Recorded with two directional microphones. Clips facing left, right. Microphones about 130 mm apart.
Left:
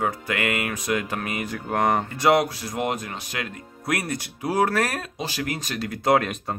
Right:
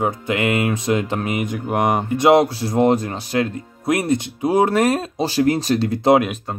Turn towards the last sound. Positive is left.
turn(degrees=-30)  # may be behind; listen again after turning